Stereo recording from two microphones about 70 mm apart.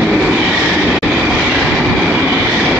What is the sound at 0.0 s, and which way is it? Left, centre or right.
Train, centre.